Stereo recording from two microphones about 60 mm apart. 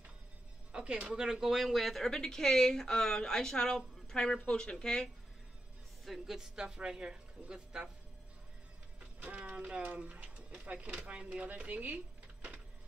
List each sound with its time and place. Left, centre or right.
0.7 s speech: centre
6.0 s speech: centre
9.2 s speech: right